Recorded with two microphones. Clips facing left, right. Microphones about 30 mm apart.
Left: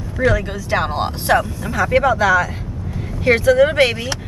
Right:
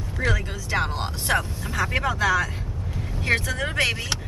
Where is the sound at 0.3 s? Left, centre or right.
Left.